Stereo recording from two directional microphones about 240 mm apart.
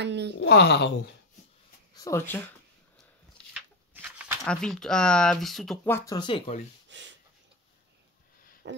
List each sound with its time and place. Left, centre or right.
0.0 s speech: right
0.4 s speech: left
2.0 s speech: centre
3.5 s speech: centre; by 6.6 s left
6.9 s a sound: right
8.6 s owl: right